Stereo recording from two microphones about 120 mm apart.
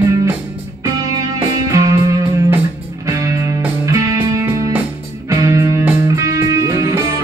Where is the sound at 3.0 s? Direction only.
25° right (ahead or behind).